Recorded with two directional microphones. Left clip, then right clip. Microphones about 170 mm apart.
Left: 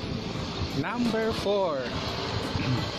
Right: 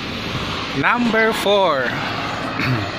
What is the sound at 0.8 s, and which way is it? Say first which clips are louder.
Speech: right 13 dB; 5° right (ahead or behind).